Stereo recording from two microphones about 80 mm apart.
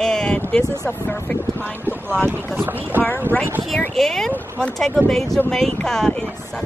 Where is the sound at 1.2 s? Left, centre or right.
Left.